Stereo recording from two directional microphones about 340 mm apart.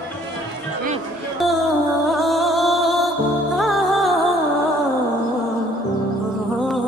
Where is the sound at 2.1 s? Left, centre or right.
Centre.